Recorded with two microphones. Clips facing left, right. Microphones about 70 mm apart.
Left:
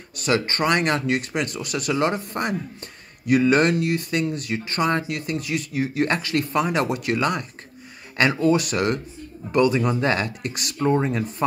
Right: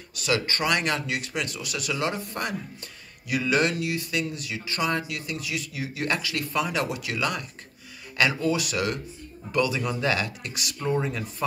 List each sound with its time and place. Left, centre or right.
0.2 s speech: left
10.8 s speech: left